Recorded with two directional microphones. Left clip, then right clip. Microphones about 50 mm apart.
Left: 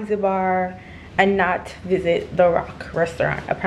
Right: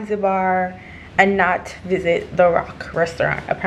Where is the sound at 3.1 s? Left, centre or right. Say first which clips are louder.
Right 2 dB; left.